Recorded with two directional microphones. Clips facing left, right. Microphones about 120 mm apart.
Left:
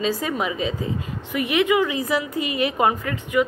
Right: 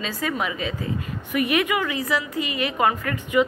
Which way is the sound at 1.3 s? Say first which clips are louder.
Left 2 dB; 15° left (ahead or behind).